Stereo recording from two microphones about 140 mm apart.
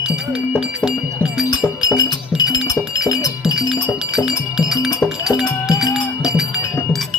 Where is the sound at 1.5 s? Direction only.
30° left (ahead or behind).